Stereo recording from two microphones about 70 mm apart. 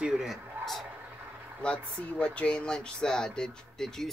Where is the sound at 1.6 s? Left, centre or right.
Centre.